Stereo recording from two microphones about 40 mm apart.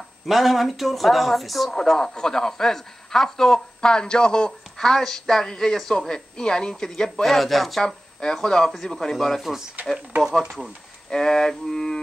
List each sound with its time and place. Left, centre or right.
0.3 s a man's voice: centre
1.7 s speech: centre
7.3 s a man's voice: centre
7.8 s speech: centre
9.8 s speech: right
11.1 s speech: centre